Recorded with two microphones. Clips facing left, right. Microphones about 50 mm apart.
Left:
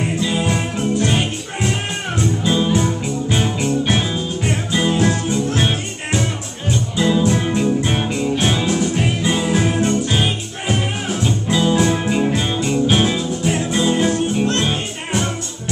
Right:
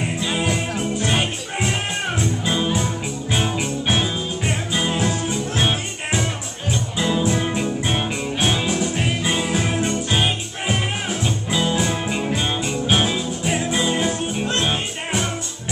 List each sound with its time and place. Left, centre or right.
0.2 s music: centre
11.8 s music: centre
12.4 s music: centre